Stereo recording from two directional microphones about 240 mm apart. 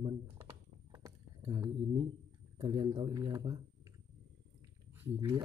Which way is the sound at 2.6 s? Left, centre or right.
Centre.